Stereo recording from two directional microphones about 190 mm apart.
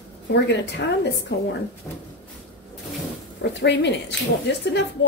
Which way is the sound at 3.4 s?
65° left (ahead or behind).